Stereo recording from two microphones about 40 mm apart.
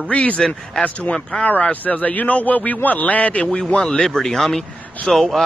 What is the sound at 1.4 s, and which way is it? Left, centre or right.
Speech, left.